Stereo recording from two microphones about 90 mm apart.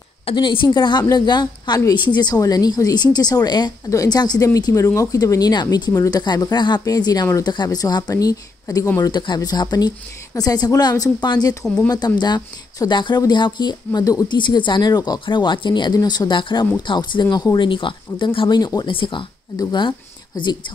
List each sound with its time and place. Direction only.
0.2 s a woman's voice: 80° left; by 6.8 s 55° left (ahead or behind)
6.8 s a woman's voice: 45° left (ahead or behind)
9.1 s a woman's voice: 55° left (ahead or behind)
11.6 s speech: 5° left (ahead or behind)
12.4 s speech: 45° left (ahead or behind)
12.9 s a woman's voice: 60° left (ahead or behind)
14.2 s a woman's voice: 60° left (ahead or behind)
15.1 s speech: 60° left (ahead or behind)
17.6 s speech: 65° left (ahead or behind)
19.6 s speech: 55° left (ahead or behind)